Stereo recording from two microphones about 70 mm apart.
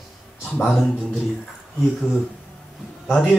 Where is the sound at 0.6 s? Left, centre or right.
Centre.